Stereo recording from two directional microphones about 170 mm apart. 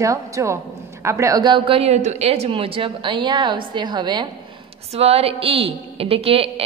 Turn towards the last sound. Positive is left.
turn(degrees=-35)  # may be behind; listen again after turning